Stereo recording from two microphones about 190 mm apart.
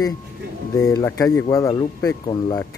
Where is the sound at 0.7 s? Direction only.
20° left (ahead or behind).